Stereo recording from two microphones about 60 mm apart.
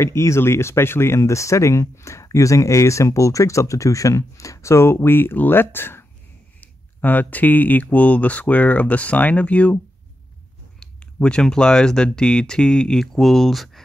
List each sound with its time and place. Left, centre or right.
0.0 s speech: left
10.8 s speech: centre